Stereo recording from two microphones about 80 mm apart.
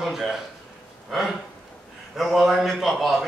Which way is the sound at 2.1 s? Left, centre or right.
Centre.